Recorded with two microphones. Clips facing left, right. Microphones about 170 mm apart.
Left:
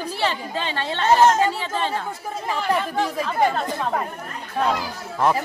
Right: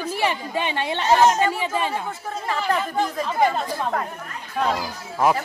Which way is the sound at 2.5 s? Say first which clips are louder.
Left 1 dB; 10° left (ahead or behind).